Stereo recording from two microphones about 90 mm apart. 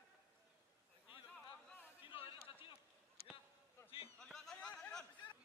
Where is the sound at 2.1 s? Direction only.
90° left.